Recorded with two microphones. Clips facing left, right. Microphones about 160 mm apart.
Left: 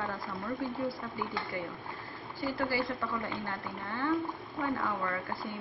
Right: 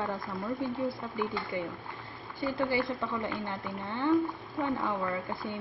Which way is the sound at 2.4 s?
20° right (ahead or behind).